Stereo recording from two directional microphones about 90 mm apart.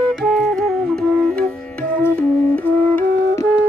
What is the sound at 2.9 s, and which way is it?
Flute, 30° left (ahead or behind).